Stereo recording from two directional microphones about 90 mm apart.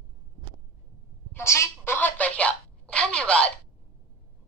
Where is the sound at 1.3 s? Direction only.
30° left (ahead or behind).